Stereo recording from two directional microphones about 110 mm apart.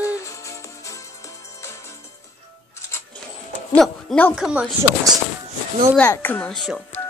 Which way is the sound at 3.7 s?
5° left (ahead or behind).